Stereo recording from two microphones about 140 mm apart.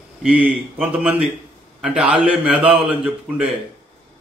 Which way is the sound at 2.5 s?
40° right (ahead or behind).